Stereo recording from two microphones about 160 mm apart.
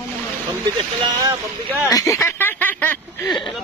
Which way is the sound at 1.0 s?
20° right (ahead or behind).